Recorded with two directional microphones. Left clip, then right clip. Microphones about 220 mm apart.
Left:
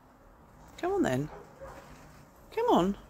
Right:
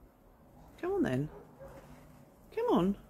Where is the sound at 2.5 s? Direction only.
10° right (ahead or behind).